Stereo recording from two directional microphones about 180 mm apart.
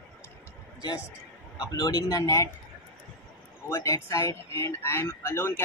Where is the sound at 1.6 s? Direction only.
20° left (ahead or behind).